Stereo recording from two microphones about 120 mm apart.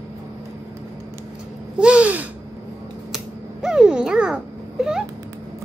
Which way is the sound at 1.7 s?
10° right (ahead or behind).